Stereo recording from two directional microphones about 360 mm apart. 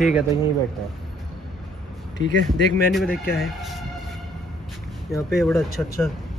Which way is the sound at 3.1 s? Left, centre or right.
Left.